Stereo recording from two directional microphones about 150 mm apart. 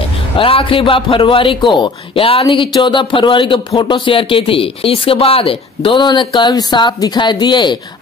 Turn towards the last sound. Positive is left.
turn(degrees=30)  # may be behind; listen again after turning